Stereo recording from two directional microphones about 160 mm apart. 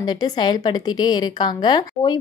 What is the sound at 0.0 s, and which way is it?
A woman's voice, 25° left (ahead or behind).